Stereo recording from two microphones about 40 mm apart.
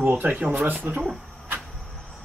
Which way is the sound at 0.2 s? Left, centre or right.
Right.